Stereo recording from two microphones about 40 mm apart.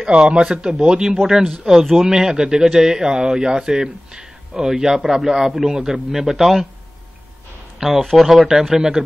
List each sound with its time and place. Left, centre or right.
0.0 s a man's voice: right
4.6 s a man's voice: centre
7.8 s a man's voice: centre
8.2 s a man's voice: centre